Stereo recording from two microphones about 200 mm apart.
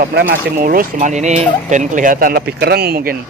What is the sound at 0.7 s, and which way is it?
Speech, 40° right (ahead or behind).